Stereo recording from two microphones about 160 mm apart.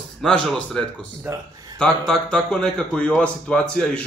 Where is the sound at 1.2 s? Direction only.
15° right (ahead or behind).